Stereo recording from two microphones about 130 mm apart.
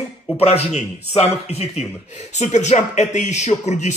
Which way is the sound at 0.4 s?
55° left (ahead or behind).